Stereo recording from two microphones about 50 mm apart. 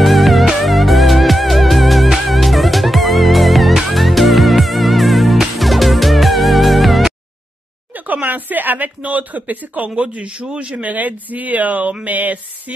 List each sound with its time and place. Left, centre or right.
0.0 s music: centre
7.9 s a man's voice: right